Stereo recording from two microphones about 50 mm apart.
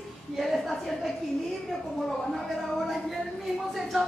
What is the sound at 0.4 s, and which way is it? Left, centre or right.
Speech, centre.